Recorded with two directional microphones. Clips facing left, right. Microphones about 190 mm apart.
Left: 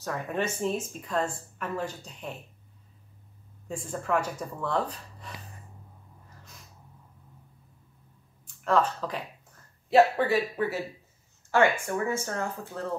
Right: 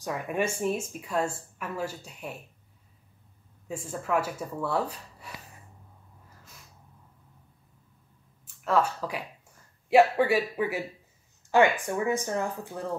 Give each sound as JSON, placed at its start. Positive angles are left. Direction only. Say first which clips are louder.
{"t": 0.0, "sound": "speech", "louder": "right 1 dB", "side_deg": -10}
{"t": 3.6, "sound": "speech", "louder": "left 1 dB", "side_deg": -5}
{"t": 8.6, "sound": "speech", "louder": "left 1 dB", "side_deg": -10}